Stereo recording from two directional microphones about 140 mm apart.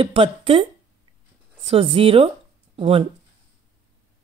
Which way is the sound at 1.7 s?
40° right (ahead or behind).